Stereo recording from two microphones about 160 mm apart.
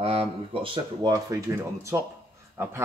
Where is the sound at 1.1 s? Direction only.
20° right (ahead or behind).